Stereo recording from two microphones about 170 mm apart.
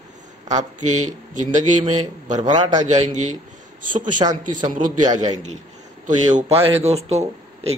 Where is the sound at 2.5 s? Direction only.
45° right (ahead or behind).